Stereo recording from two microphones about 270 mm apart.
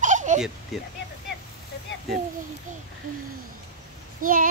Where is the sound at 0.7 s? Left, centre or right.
Centre.